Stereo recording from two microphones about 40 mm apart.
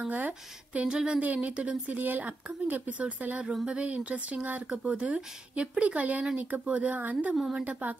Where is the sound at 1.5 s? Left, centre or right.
Right.